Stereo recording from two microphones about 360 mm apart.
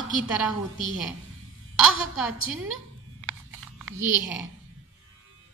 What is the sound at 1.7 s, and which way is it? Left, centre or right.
Speech, centre.